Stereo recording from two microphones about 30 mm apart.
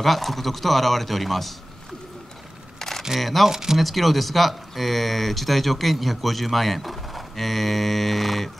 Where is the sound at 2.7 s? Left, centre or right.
Centre.